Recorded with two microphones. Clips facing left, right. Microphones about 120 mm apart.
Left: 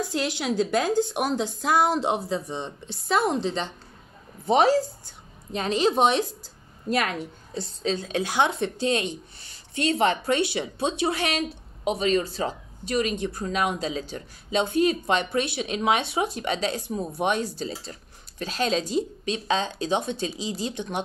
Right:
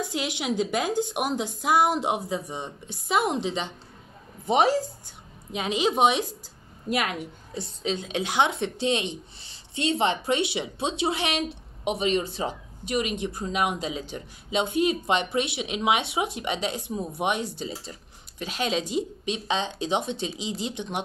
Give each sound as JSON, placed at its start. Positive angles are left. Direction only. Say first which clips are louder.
{"t": 0.1, "sound": "speech", "louder": "left 2 dB", "side_deg": -15}